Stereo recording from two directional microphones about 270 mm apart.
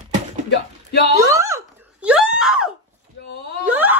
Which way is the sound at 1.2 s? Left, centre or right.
Centre.